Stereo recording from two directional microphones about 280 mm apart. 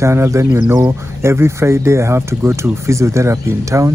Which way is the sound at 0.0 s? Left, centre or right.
Centre.